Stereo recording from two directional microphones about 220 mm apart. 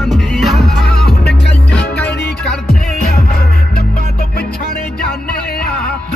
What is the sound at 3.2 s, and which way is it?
Music, 45° left (ahead or behind).